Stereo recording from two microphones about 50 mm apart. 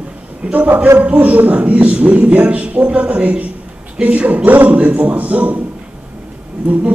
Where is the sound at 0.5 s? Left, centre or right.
Right.